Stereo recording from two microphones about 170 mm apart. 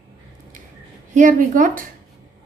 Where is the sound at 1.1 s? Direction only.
50° right (ahead or behind).